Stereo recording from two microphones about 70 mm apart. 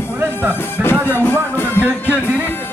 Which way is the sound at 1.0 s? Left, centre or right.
Left.